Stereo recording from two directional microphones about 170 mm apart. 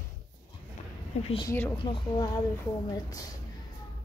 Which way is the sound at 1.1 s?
40° left (ahead or behind).